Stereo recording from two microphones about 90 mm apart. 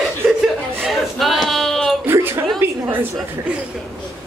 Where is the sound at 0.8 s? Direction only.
Centre (ahead or behind).